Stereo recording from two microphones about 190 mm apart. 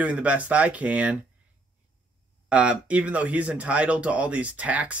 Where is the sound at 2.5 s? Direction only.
5° right (ahead or behind).